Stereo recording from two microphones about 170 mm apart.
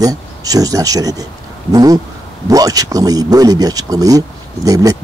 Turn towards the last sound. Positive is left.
turn(degrees=-20)  # may be behind; listen again after turning